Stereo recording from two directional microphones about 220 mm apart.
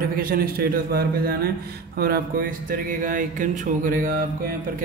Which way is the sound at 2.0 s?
45° right (ahead or behind).